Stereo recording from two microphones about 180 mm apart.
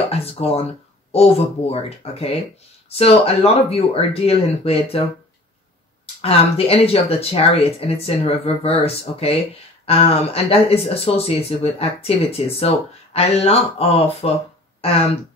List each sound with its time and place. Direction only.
0.1 s speech: 35° left (ahead or behind)
6.2 s speech: 35° left (ahead or behind)